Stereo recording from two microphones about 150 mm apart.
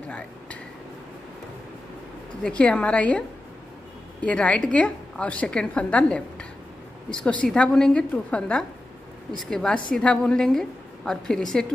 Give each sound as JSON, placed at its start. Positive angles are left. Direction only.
{"t": 2.4, "sound": "a woman's voice", "side_deg": 10}